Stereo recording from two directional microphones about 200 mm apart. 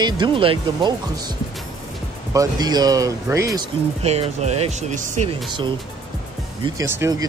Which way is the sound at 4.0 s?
30° right (ahead or behind).